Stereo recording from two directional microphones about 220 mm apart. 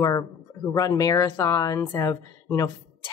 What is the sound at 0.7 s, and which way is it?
Speech, 15° left (ahead or behind).